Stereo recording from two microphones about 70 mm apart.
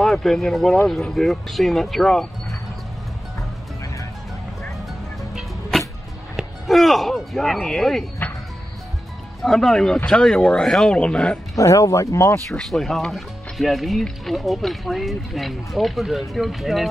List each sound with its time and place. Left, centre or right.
0.0 s speech: centre
6.3 s speech: centre
8.2 s music: left
9.4 s speech: centre
11.5 s speech: left
12.4 s speech: centre